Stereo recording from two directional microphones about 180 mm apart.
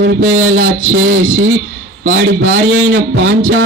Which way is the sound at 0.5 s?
90° right.